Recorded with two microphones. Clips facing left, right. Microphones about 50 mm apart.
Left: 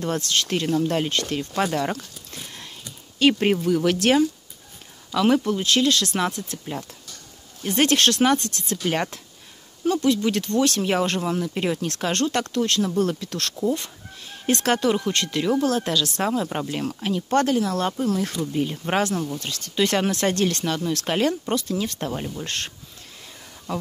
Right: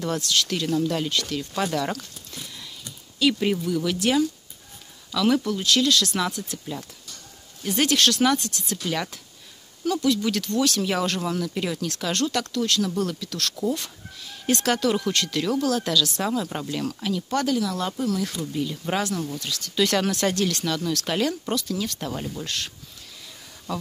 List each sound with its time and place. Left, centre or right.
0.0 s speech: left
3.2 s speech: left
3.6 s speech: left
5.1 s speech: left
13.6 s speech: left
14.9 s speech: left
23.7 s speech: left